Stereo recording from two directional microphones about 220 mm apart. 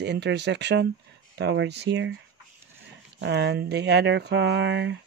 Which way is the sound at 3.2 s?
50° right (ahead or behind).